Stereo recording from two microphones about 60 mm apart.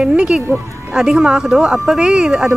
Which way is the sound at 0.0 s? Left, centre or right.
Centre.